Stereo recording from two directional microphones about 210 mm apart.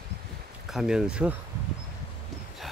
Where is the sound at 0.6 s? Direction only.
Centre (ahead or behind).